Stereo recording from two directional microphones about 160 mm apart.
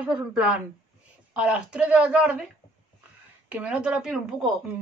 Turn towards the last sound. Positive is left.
turn(degrees=-5)  # may be behind; listen again after turning